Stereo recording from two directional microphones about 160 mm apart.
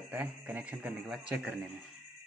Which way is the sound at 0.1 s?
10° right (ahead or behind).